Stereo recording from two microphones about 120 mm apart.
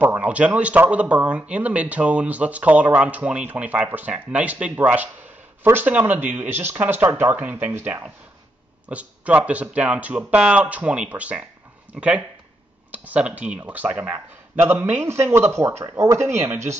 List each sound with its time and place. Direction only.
0.0 s speech: 10° right (ahead or behind)